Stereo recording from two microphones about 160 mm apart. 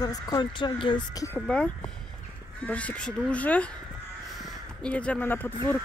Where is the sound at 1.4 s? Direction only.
5° left (ahead or behind).